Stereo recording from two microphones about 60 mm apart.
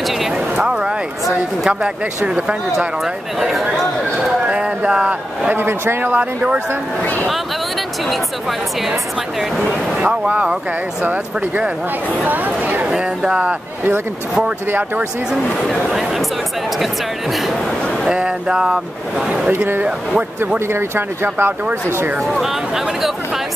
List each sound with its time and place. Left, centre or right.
0.2 s a sound: centre
1.3 s speech: centre
3.3 s speech: centre
4.2 s speech: centre
5.5 s a man's voice: right
9.7 s a man's voice: right
12.9 s speech: centre
14.7 s a man's voice: right
18.1 s speech: centre
19.5 s speech: right